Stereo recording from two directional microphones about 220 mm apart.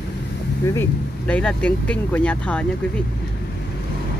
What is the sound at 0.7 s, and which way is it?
Speech, 5° left (ahead or behind).